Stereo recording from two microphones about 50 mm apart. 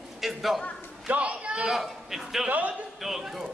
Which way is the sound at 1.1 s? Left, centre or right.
Right.